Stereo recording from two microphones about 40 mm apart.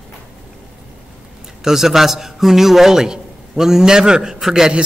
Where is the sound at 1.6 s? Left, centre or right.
Centre.